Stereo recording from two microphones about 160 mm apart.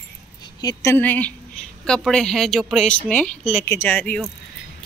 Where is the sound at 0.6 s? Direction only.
20° left (ahead or behind).